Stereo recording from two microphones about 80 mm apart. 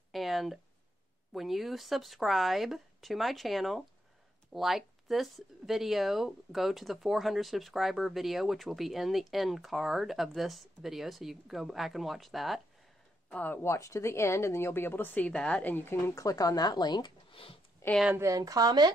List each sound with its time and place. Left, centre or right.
0.1 s a sound: centre
1.3 s speech: centre
13.3 s a woman's voice: left
16.2 s speech: left
17.8 s speech: left
18.3 s speech: right